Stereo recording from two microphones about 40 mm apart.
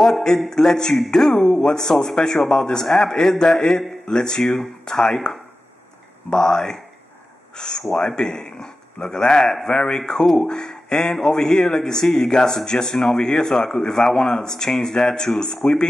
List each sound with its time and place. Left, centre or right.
0.5 s a man's voice: centre